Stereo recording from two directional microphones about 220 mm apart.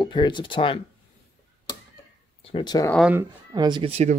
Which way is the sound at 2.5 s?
20° left (ahead or behind).